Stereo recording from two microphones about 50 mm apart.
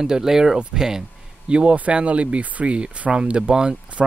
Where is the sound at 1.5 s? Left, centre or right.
Right.